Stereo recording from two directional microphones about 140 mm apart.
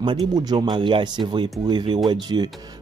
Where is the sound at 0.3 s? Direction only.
30° right (ahead or behind).